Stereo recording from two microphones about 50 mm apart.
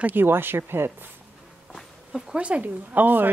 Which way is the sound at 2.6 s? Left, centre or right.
Right.